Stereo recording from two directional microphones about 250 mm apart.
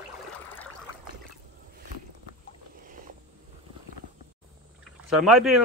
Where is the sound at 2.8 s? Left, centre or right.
Right.